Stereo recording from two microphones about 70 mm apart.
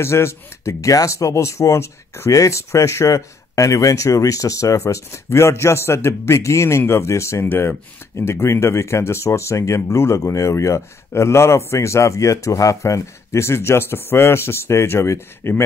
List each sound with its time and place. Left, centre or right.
0.0 s speech: left